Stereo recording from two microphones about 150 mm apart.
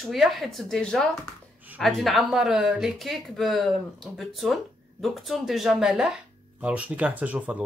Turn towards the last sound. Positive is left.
turn(degrees=-10)  # may be behind; listen again after turning